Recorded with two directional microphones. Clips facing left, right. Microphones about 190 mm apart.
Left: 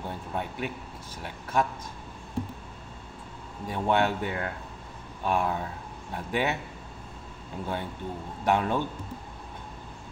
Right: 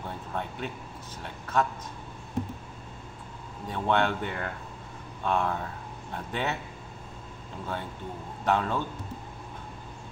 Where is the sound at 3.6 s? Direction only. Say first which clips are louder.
Left 1 dB; 10° left (ahead or behind).